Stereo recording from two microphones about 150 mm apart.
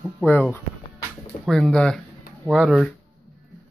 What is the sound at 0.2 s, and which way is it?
Speech, 15° left (ahead or behind).